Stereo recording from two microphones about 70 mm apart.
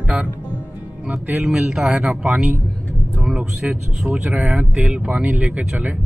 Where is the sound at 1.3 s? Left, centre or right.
Centre.